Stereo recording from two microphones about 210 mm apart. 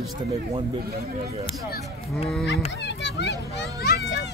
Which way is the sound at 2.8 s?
55° left (ahead or behind).